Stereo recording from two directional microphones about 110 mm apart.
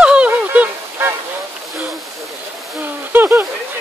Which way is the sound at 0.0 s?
10° right (ahead or behind).